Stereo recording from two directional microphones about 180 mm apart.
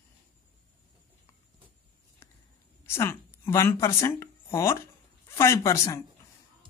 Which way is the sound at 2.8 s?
15° left (ahead or behind).